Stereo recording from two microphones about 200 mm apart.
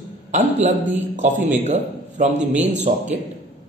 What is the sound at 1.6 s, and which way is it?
A man's voice, 35° right (ahead or behind).